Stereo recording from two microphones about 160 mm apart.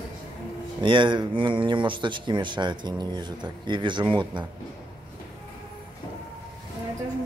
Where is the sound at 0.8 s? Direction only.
30° right (ahead or behind).